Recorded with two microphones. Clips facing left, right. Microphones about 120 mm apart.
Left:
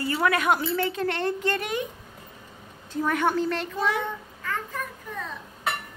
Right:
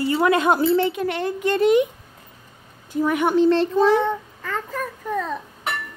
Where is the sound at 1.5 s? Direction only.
20° right (ahead or behind).